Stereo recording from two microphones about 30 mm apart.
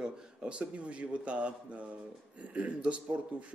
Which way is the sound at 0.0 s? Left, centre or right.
Right.